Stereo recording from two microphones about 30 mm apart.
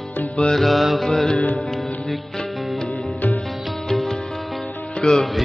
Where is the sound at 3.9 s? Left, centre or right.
Centre.